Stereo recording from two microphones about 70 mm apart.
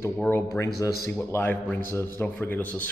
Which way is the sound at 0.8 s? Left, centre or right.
Left.